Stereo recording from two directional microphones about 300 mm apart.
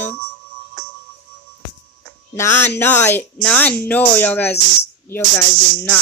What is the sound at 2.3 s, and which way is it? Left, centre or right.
Speech, centre.